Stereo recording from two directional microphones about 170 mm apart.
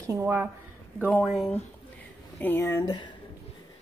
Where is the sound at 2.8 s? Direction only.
25° left (ahead or behind).